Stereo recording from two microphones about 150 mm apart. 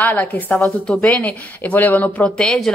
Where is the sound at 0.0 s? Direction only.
10° left (ahead or behind).